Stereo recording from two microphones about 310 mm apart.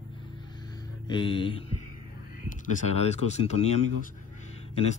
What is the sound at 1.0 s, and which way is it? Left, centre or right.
Speech, centre.